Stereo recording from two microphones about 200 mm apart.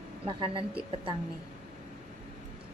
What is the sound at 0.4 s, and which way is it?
Speech, 25° right (ahead or behind).